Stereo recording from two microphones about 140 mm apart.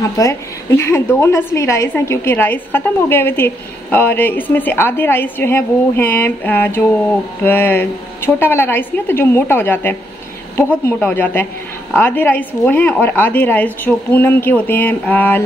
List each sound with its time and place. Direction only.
0.2 s a woman's voice: 20° left (ahead or behind)